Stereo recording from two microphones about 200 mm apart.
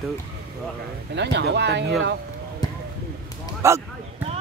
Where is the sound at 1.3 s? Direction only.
60° right (ahead or behind).